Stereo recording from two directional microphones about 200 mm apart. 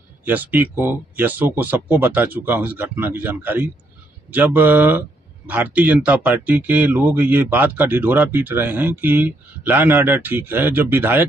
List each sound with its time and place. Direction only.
0.2 s speech: 10° right (ahead or behind)